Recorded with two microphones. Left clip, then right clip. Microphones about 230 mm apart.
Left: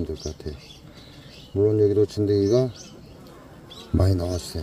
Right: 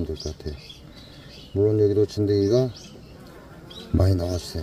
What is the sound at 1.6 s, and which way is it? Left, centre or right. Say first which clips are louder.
Speech: left 1 dB; centre.